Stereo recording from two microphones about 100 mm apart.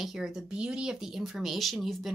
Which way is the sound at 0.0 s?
5° right (ahead or behind).